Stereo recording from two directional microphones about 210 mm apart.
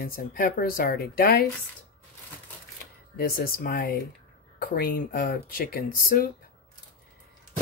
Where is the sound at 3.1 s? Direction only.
45° left (ahead or behind).